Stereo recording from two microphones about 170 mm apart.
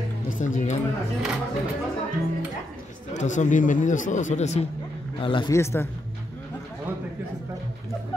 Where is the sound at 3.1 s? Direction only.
45° left (ahead or behind).